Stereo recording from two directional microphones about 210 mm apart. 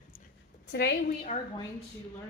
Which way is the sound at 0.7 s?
50° left (ahead or behind).